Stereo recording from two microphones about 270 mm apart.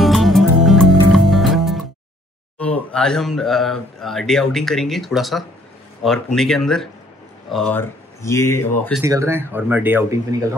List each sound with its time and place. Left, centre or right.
0.0 s music: centre
2.6 s speech: centre
9.0 s speech: centre